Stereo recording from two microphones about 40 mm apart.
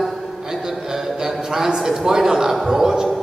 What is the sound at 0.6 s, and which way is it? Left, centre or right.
A man's voice, centre.